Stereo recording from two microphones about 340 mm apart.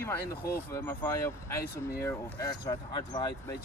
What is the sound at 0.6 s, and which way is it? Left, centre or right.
Speech, centre.